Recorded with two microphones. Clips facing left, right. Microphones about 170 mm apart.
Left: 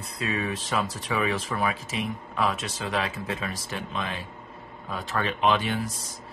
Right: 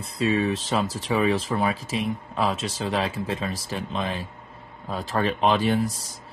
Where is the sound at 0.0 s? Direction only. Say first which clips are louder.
Right 7 dB; 30° right (ahead or behind).